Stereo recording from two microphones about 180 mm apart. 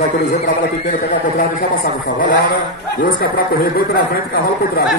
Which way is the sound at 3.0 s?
55° left (ahead or behind).